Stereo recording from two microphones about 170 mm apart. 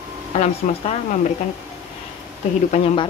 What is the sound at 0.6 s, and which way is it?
Speech, 50° left (ahead or behind).